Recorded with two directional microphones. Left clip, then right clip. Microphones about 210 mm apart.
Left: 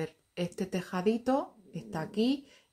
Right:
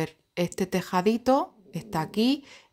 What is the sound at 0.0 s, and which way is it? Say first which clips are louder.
Speech: right 7 dB; 45° right (ahead or behind).